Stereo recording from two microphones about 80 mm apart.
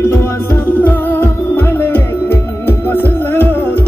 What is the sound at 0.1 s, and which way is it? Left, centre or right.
Music, left.